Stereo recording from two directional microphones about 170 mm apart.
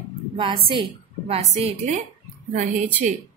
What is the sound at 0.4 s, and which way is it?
A woman's voice, 30° right (ahead or behind).